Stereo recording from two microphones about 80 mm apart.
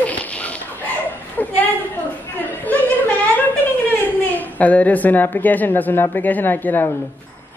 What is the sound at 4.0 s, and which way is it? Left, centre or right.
A woman's voice, left.